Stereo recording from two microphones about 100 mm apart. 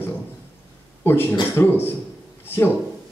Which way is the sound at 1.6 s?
30° left (ahead or behind).